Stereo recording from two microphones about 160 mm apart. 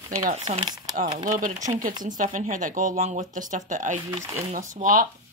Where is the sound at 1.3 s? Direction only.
55° right (ahead or behind).